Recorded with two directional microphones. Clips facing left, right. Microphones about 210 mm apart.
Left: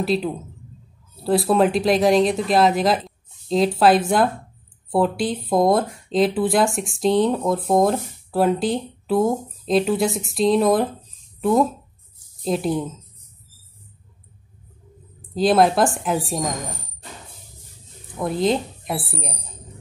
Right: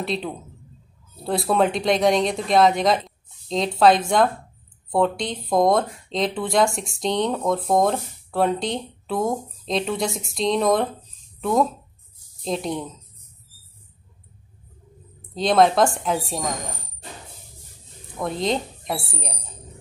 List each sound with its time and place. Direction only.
0.0 s speech: 5° left (ahead or behind)
12.4 s speech: 5° left (ahead or behind)
15.3 s speech: 5° left (ahead or behind)
18.2 s speech: centre (ahead or behind)